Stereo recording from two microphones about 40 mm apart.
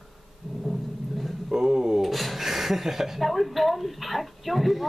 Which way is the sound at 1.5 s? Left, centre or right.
Centre.